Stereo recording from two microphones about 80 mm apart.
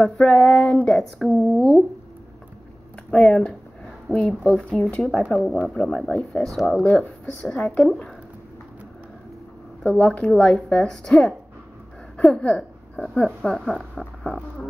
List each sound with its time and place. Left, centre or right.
0.0 s speech: centre
3.1 s speech: centre
4.6 s speech: centre
9.8 s speech: centre